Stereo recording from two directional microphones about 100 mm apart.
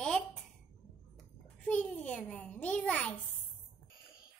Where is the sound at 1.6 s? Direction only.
10° left (ahead or behind).